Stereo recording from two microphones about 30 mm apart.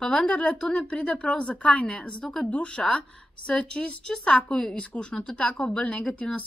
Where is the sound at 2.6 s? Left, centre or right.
Left.